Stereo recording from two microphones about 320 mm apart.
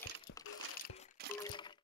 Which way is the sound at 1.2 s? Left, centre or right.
Right.